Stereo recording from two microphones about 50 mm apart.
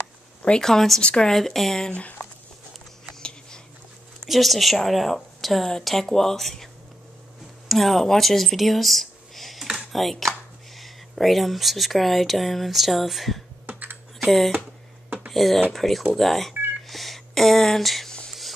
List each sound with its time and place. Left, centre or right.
0.6 s speech: centre
1.3 s speech: centre
1.9 s speech: left
3.2 s a sound: centre
4.3 s speech: centre
13.7 s computer keyboard: right
15.3 s speech: centre
16.8 s telephone dialing: centre